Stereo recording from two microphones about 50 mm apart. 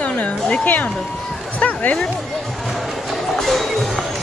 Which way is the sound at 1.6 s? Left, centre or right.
Left.